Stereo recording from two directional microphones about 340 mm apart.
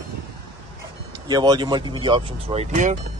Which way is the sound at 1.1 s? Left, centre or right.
Centre.